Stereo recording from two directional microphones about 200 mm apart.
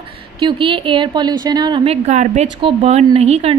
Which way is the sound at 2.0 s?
35° right (ahead or behind).